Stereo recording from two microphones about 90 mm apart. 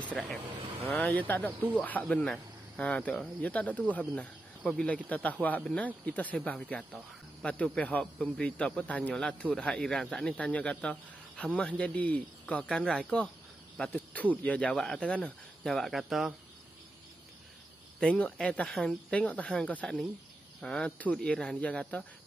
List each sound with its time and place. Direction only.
0.0 s speech: 15° left (ahead or behind)
1.1 s speech: 20° left (ahead or behind)
13.8 s cricket: 20° left (ahead or behind)
14.3 s speech: 15° left (ahead or behind); by 16.3 s centre (ahead or behind)
18.0 s speech: 10° left (ahead or behind)